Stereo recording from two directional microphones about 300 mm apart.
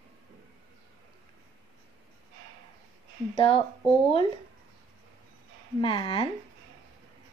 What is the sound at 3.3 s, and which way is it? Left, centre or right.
Speech, centre.